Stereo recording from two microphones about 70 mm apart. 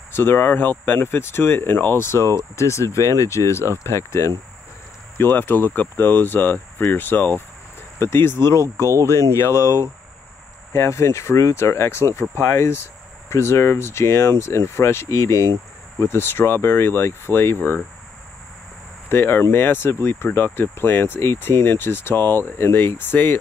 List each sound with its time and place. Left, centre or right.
0.1 s speech: left
5.1 s speech: left
19.0 s speech: left